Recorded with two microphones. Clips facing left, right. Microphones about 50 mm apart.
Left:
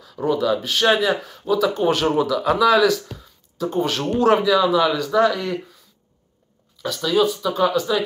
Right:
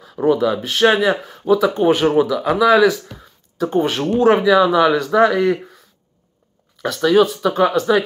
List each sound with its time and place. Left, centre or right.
0.0 s speech: right
1.8 s speech: centre; by 5.8 s right
6.8 s speech: right